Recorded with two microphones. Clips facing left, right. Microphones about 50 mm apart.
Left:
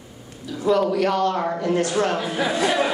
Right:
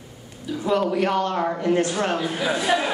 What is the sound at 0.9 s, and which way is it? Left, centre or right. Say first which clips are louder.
Speech: left 2 dB; right.